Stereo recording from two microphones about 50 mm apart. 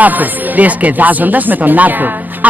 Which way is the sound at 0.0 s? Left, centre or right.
Right.